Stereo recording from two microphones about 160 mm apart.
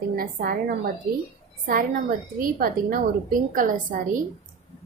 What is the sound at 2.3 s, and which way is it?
A woman's voice, 60° right (ahead or behind).